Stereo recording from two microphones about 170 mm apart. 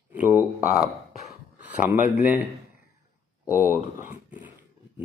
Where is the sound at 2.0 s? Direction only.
10° right (ahead or behind).